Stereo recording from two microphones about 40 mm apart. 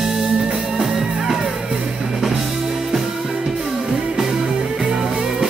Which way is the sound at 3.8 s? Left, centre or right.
Centre.